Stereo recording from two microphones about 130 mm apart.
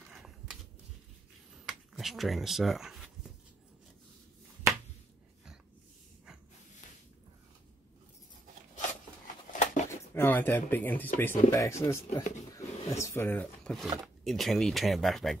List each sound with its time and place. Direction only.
0.1 s a sound: 5° right (ahead or behind)
2.0 s speech: centre (ahead or behind)
9.5 s a sound: 70° left (ahead or behind)
9.8 s speech: 20° left (ahead or behind)
12.2 s speech: 65° left (ahead or behind)
12.5 s speech: 20° left (ahead or behind)
14.0 s speech: centre (ahead or behind)